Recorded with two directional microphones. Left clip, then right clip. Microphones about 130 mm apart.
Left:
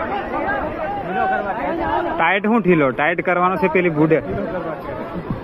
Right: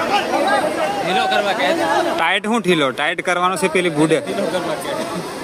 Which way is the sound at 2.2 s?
30° right (ahead or behind).